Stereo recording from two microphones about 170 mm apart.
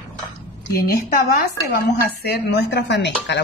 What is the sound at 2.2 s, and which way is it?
Speech, 80° left.